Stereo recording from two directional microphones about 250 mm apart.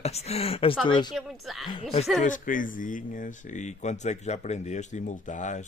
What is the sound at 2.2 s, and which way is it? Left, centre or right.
A man's voice, left.